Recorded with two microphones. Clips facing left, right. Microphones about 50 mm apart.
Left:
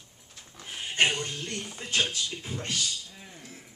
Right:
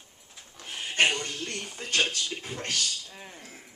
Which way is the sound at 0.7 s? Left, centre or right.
Right.